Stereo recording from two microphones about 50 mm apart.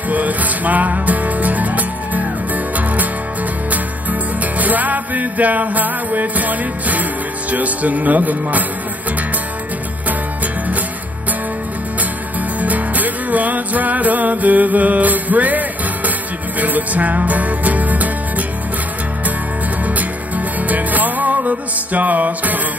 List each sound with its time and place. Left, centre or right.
0.1 s music: right
7.5 s speech: right
12.5 s music: right
20.0 s music: right